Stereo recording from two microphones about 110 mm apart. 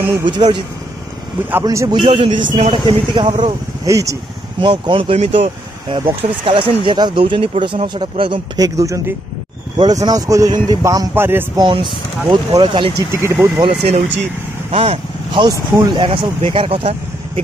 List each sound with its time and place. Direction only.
0.3 s speech: 45° right (ahead or behind)
1.6 s speech: 35° right (ahead or behind)
2.0 s speech: 50° right (ahead or behind)
3.8 s speech: 30° right (ahead or behind)
4.6 s speech: 50° right (ahead or behind)
5.3 s speech: 50° right (ahead or behind)
8.5 s speech: 30° right (ahead or behind)
11.5 s speech: 45° right (ahead or behind)
13.1 s speech: 25° right (ahead or behind)
13.7 s speech: 70° right (ahead or behind)
14.7 s speech: 55° right (ahead or behind)